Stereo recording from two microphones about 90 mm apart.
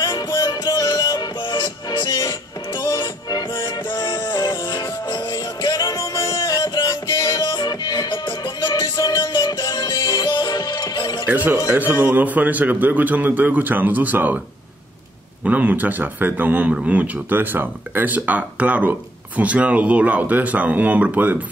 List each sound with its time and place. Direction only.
0.0 s music: 55° left (ahead or behind)
5.7 s music: 45° left (ahead or behind)
11.2 s a man's voice: 20° right (ahead or behind)
15.4 s speech: 15° right (ahead or behind)